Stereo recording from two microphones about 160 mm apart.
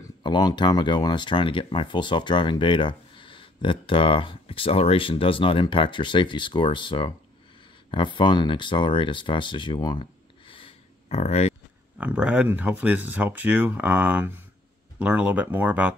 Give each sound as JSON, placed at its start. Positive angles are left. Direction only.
{"t": 0.2, "sound": "speech", "side_deg": 25}
{"t": 10.5, "sound": "a sound", "side_deg": 40}
{"t": 12.0, "sound": "speech", "side_deg": -10}